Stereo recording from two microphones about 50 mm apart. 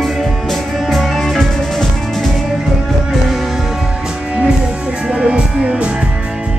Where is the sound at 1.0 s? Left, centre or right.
Centre.